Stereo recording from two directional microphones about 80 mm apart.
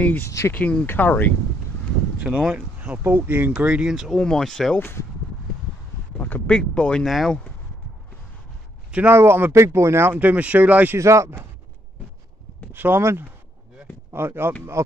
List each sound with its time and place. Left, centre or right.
0.5 s speech: left
2.1 s speech: centre
4.1 s speech: centre
4.7 s speech: left
6.1 s a sound: centre
6.8 s speech: centre
9.1 s speech: right
10.1 s speech: centre
11.0 s speech: right
12.7 s speech: right